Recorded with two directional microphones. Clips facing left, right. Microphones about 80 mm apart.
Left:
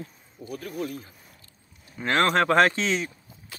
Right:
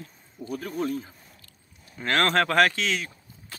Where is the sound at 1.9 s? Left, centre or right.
Centre.